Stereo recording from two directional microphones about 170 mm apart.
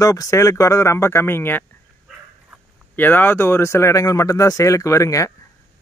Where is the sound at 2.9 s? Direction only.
10° left (ahead or behind).